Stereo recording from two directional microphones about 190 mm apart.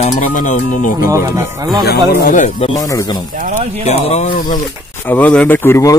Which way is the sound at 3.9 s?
35° left (ahead or behind).